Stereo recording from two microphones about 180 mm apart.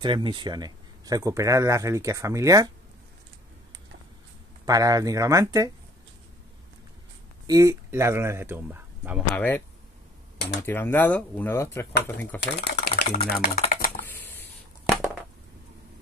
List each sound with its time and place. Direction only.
0.0 s speech: 25° right (ahead or behind)
4.6 s speech: 20° right (ahead or behind)
7.4 s speech: 20° right (ahead or behind)
9.3 s speech: 10° left (ahead or behind)
10.6 s speech: 15° left (ahead or behind)
12.4 s speech: 65° left (ahead or behind)
13.4 s stir: 55° left (ahead or behind)
14.0 s a sound: 10° left (ahead or behind)